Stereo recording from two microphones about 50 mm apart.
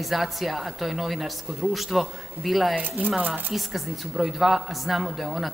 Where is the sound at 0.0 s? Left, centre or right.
Centre.